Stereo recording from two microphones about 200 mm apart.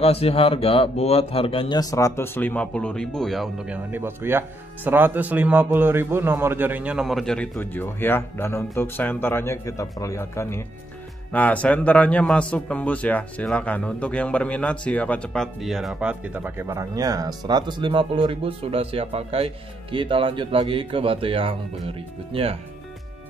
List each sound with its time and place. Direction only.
0.0 s speech: 30° left (ahead or behind); by 22.6 s 30° right (ahead or behind)